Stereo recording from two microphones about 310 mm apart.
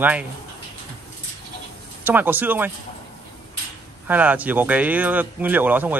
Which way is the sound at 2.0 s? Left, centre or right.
Centre.